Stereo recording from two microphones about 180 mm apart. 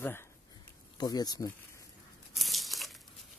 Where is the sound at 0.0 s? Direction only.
15° left (ahead or behind).